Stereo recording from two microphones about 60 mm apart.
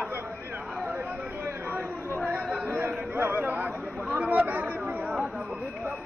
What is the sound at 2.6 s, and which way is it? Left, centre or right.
Chatter, right.